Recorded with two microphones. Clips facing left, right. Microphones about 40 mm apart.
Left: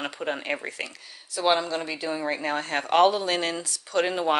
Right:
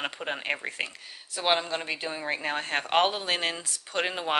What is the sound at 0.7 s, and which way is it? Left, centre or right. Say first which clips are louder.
Speech: right 1 dB; right.